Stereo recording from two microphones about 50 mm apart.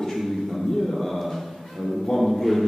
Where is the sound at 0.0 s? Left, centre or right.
Centre.